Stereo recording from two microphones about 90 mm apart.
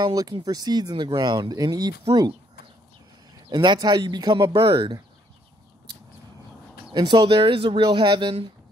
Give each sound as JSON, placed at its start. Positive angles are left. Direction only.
{"t": 0.0, "sound": "speech", "side_deg": -45}
{"t": 3.5, "sound": "speech", "side_deg": -50}
{"t": 7.0, "sound": "speech", "side_deg": -55}
{"t": 7.9, "sound": "speech", "side_deg": -65}